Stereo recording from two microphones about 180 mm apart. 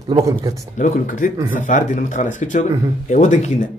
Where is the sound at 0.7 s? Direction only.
45° left (ahead or behind).